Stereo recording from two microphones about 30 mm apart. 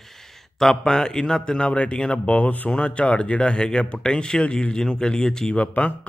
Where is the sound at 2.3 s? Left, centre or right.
Left.